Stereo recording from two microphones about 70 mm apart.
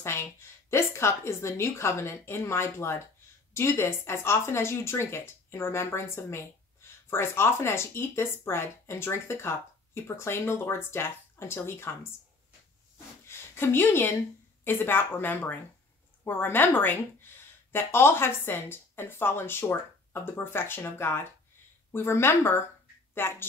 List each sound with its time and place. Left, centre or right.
0.0 s speech: left
13.3 s speech: left